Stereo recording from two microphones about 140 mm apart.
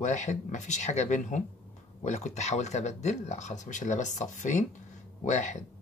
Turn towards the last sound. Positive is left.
turn(degrees=60)  # may be behind; listen again after turning